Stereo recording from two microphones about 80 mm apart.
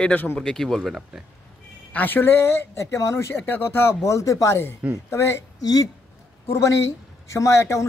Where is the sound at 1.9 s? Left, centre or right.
Left.